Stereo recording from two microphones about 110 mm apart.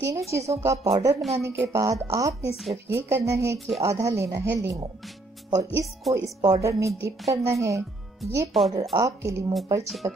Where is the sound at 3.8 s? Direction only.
30° right (ahead or behind).